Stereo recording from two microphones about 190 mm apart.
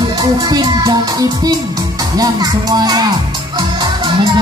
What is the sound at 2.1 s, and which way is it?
Speech, 20° right (ahead or behind).